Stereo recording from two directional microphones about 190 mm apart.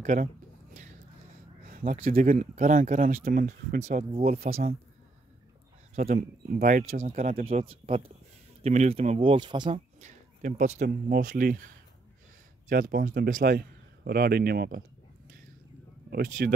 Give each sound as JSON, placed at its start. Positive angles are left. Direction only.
{"t": 0.0, "sound": "speech", "side_deg": -40}
{"t": 1.7, "sound": "speech", "side_deg": -40}
{"t": 5.9, "sound": "speech", "side_deg": -35}
{"t": 7.4, "sound": "speech", "side_deg": -30}
{"t": 16.1, "sound": "speech", "side_deg": -50}